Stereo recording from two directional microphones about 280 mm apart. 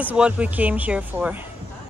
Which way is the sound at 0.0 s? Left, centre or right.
Centre.